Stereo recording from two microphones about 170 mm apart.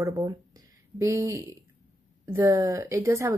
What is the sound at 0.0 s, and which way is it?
A woman's voice, 20° right (ahead or behind).